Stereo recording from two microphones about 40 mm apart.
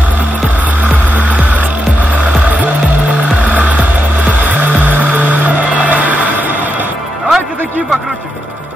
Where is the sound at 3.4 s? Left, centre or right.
Right.